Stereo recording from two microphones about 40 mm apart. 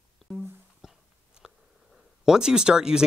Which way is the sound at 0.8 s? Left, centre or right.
Centre.